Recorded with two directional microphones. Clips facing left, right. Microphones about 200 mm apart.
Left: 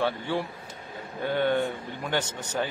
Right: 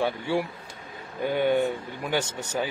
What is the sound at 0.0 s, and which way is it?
A man's voice, 10° right (ahead or behind).